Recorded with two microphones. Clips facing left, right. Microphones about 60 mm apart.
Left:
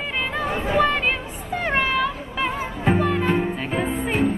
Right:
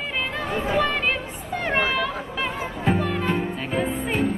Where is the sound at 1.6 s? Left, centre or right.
Centre.